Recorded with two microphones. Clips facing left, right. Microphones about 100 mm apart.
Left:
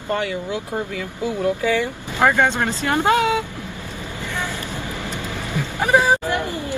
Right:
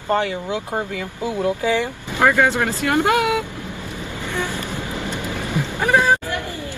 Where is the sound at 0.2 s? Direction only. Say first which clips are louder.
Right 1 dB; 25° right (ahead or behind).